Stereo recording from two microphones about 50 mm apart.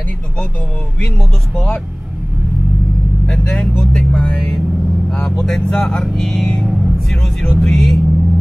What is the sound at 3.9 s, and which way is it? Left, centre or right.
Speech, left.